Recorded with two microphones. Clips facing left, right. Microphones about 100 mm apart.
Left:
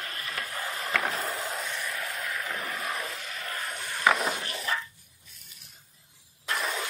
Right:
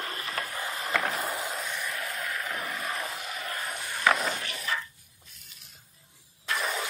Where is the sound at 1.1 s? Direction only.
15° right (ahead or behind).